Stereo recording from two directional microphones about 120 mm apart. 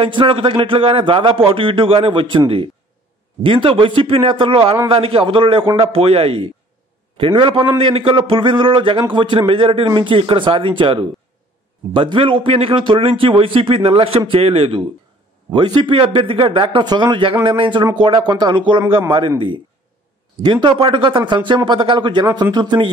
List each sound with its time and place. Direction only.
0.0 s a man's voice: 45° right (ahead or behind)
20.8 s a man's voice: 45° right (ahead or behind)